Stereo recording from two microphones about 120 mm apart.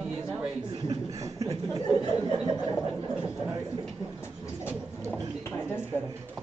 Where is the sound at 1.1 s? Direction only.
25° right (ahead or behind).